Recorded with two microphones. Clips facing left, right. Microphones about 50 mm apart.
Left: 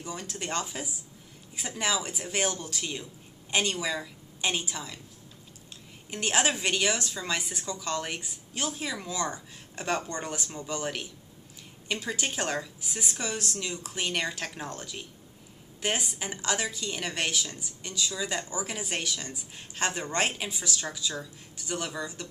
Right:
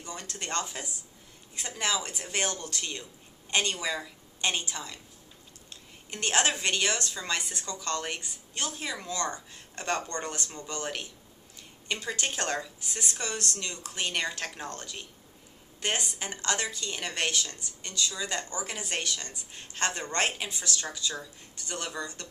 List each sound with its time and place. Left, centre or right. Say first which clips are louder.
0.0 s a woman's voice: left 3 dB; centre
6.0 s a woman's voice: even; centre